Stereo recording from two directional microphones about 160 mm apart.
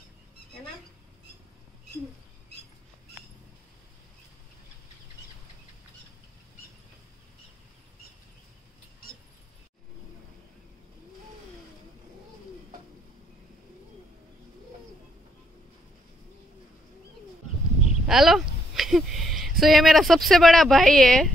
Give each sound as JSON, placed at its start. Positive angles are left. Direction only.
{"t": 18.0, "sound": "speech", "side_deg": 0}